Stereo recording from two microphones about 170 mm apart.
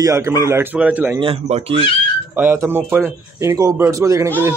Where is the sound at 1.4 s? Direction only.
40° right (ahead or behind).